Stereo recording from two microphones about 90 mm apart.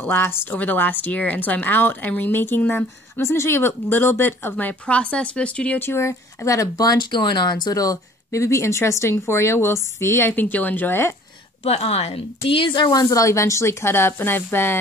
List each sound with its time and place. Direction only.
0.0 s a woman's voice: 25° left (ahead or behind)
5.9 s a woman's voice: 30° left (ahead or behind)
11.6 s a woman's voice: 90° left
12.4 s speech: 75° left (ahead or behind); by 14.8 s 25° left (ahead or behind)